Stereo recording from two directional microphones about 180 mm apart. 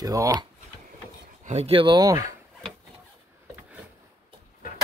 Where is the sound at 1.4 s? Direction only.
35° right (ahead or behind); by 2.3 s 20° right (ahead or behind).